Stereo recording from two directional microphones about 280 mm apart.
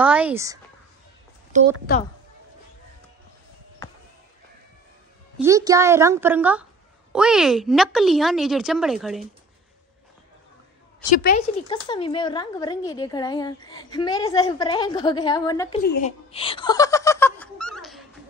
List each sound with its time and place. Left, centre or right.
0.0 s a woman's voice: centre
1.5 s a woman's voice: right
5.4 s a woman's voice: centre
11.1 s speech: left
11.7 s a woman's voice: centre
15.8 s a sound: left; by 18.0 s centre